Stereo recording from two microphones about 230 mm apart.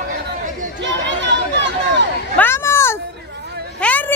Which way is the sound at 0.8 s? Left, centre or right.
Right.